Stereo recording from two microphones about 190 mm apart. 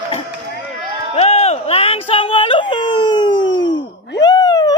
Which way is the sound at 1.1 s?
35° left (ahead or behind).